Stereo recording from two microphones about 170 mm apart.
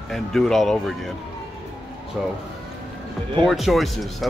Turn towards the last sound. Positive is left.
turn(degrees=0)  # may be behind; listen again after turning